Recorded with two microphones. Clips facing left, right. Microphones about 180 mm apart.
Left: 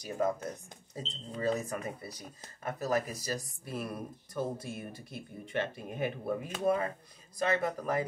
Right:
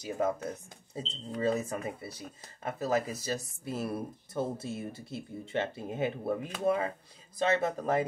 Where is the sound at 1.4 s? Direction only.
25° right (ahead or behind).